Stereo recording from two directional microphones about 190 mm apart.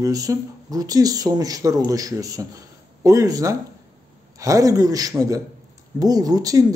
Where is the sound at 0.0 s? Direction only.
15° right (ahead or behind).